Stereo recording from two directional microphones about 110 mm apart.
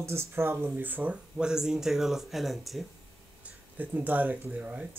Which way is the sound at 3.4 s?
15° right (ahead or behind).